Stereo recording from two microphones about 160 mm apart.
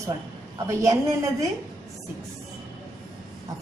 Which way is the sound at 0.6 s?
20° right (ahead or behind).